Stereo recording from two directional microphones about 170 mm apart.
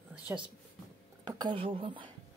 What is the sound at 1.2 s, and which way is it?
Speech, 25° right (ahead or behind).